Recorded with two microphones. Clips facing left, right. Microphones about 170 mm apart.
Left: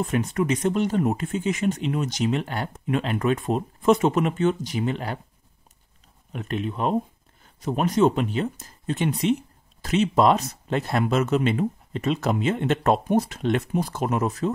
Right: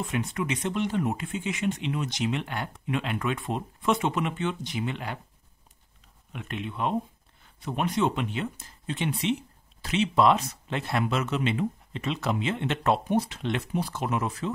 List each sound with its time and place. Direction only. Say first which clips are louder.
0.0 s speech: left 6 dB; 40° left (ahead or behind)
6.3 s speech: left 6 dB; 40° left (ahead or behind)